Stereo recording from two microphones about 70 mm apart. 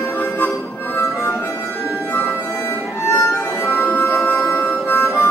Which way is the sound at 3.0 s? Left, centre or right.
Left.